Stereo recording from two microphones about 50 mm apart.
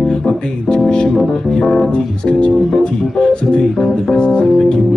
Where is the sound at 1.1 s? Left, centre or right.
Centre.